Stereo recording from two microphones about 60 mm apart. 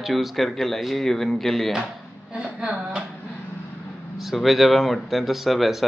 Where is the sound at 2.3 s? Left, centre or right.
Centre.